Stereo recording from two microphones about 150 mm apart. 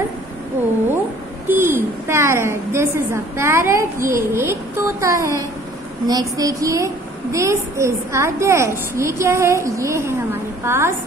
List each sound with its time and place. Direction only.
1.5 s a woman's voice: 15° right (ahead or behind)